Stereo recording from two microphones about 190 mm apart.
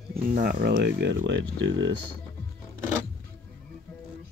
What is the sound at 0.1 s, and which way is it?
Speech, 45° right (ahead or behind).